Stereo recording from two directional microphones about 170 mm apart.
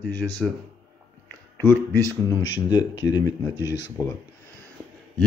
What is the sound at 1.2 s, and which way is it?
Music, 10° left (ahead or behind).